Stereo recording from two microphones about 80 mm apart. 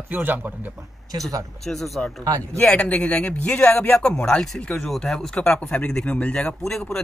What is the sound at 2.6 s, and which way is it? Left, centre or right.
Speech, centre.